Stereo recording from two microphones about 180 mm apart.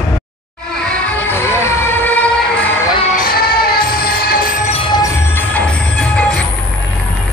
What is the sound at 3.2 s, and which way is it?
Music, 55° left (ahead or behind).